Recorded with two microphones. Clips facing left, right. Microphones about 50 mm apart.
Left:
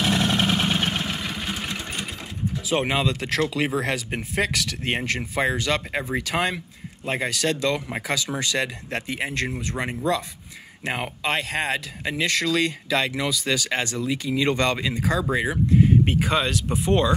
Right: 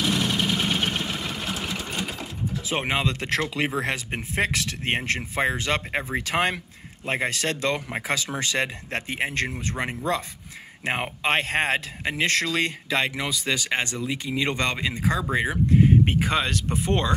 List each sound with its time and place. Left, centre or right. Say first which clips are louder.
0.0 s vehicle: left 2 dB; left
0.7 s vehicle: left 1 dB; centre
1.1 s vehicle: left 1 dB; centre
2.9 s speech: left 1 dB; right